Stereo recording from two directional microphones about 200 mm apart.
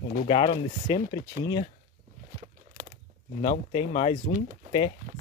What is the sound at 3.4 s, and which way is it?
Speech, 25° left (ahead or behind).